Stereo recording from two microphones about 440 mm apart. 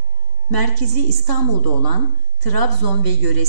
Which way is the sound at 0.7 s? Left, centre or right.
Right.